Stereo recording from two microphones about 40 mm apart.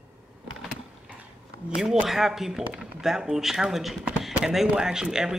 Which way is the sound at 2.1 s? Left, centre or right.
Centre.